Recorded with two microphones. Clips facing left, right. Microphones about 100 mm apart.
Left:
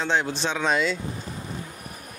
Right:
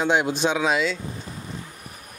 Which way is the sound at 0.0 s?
15° right (ahead or behind).